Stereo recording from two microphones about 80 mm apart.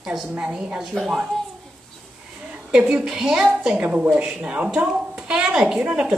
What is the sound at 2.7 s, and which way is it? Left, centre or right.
Speech, centre.